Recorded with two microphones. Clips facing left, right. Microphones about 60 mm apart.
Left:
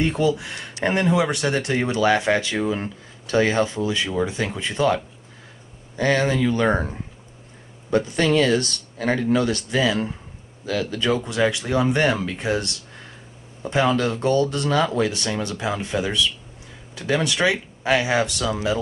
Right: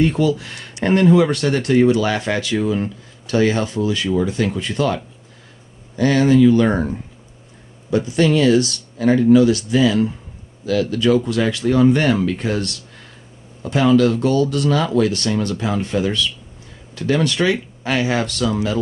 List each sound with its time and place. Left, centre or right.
0.0 s speech: centre
5.9 s speech: left
7.9 s speech: left
9.8 s speech: centre
11.2 s speech: centre
15.0 s speech: centre